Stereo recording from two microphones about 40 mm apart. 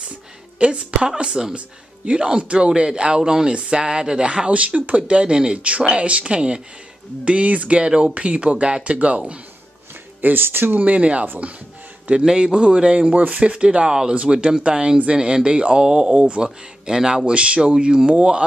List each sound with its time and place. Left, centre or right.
0.6 s speech: right
4.6 s speech: right
10.2 s speech: right
10.8 s speech: right
12.3 s speech: right
13.1 s speech: right
16.4 s speech: centre
17.3 s speech: right